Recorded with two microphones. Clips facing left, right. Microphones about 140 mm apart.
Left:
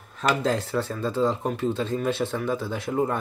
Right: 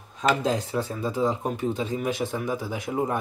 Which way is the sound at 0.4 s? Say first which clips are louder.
Left 1 dB; 15° right (ahead or behind).